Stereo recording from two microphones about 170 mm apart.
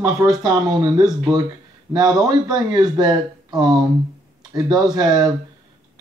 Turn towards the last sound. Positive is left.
turn(degrees=-25)  # may be behind; listen again after turning